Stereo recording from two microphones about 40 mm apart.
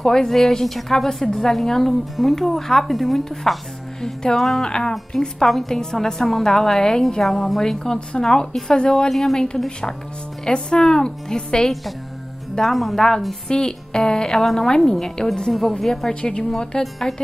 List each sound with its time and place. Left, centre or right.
0.0 s a woman's voice: centre
4.0 s a woman's voice: centre
4.4 s a woman's voice: centre
4.6 s a woman's voice: centre
5.1 s a woman's voice: centre
9.1 s a woman's voice: centre
10.4 s a woman's voice: centre
12.6 s a woman's voice: centre
16.1 s a woman's voice: left